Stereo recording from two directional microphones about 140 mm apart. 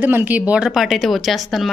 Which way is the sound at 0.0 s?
10° right (ahead or behind).